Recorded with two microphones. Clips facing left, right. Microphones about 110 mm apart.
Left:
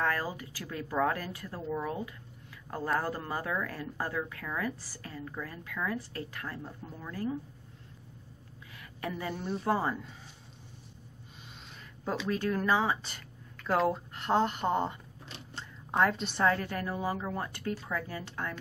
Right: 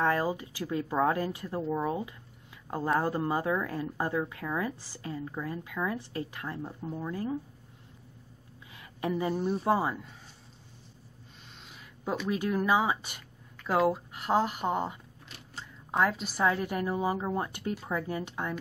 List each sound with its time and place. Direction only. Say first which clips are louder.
0.0 s speech: right 4 dB; 20° right (ahead or behind)
8.7 s a sound: right 6 dB; 20° right (ahead or behind)
9.4 s a woman's voice: right 1 dB; 15° right (ahead or behind)
12.0 s a woman's voice: right 1 dB; 10° right (ahead or behind)